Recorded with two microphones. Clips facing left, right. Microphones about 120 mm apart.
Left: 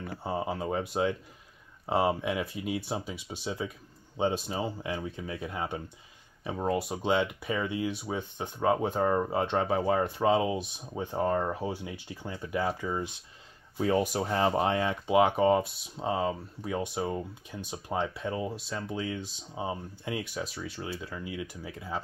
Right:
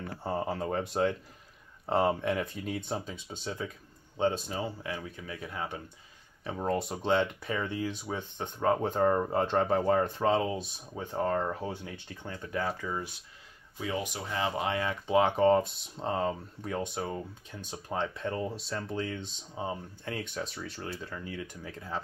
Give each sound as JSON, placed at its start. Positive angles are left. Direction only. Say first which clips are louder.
{"t": 0.0, "sound": "a sound", "louder": "even", "side_deg": 0}
{"t": 1.9, "sound": "speech", "louder": "even", "side_deg": 5}
{"t": 6.4, "sound": "speech", "louder": "left 1 dB", "side_deg": 10}
{"t": 13.7, "sound": "speech", "louder": "left 8 dB", "side_deg": 40}
{"t": 14.8, "sound": "speech", "louder": "right 1 dB", "side_deg": 20}